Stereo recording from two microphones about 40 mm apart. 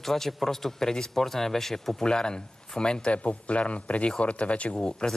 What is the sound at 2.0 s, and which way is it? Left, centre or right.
Speech, left.